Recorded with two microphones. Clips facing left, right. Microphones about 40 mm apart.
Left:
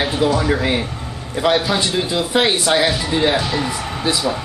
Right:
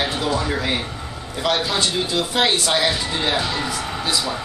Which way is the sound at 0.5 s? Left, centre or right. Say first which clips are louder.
Left 4 dB; centre.